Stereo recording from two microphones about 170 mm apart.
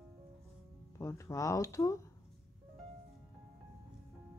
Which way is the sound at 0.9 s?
15° left (ahead or behind).